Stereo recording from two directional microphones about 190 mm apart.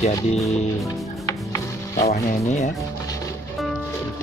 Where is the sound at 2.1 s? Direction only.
40° left (ahead or behind).